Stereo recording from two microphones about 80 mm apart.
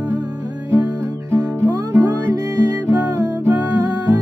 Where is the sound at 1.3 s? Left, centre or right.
Right.